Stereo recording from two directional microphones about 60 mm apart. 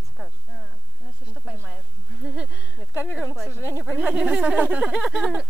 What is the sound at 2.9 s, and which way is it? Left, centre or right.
Speech, right.